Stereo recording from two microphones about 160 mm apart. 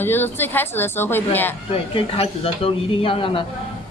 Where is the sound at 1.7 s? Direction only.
35° left (ahead or behind).